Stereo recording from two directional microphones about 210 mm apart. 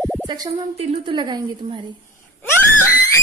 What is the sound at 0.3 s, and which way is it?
A woman's voice, 20° right (ahead or behind).